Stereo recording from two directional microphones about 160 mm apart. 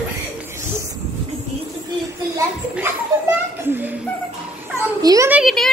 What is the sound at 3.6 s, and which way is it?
A child's voice, 15° right (ahead or behind).